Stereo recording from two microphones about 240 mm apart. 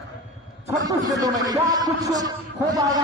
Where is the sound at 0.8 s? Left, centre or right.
Centre.